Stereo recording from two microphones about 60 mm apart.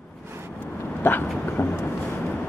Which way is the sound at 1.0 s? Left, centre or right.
Left.